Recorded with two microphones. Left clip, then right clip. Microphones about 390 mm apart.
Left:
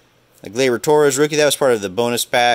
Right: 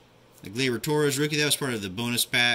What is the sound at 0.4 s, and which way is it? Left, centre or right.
Speech, centre.